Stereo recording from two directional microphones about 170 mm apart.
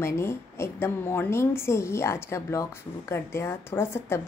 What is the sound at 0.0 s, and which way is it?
Speech, 15° left (ahead or behind).